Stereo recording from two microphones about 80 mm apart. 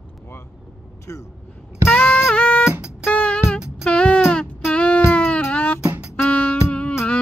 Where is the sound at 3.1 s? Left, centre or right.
Centre.